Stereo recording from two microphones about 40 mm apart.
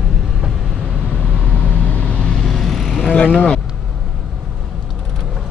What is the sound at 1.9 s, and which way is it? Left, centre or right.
Vehicle, left.